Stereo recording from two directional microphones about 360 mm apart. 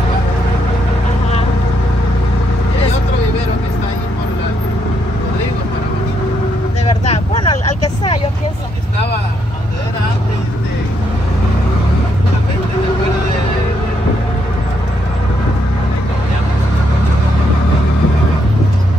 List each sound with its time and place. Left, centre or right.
6.9 s vehicle: centre